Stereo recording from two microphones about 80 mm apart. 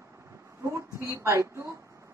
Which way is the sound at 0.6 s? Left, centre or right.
Right.